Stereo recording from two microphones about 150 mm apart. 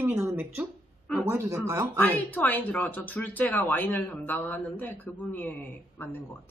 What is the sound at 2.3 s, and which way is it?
Speech, 10° left (ahead or behind).